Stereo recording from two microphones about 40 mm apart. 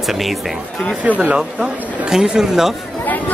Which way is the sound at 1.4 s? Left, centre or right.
Centre.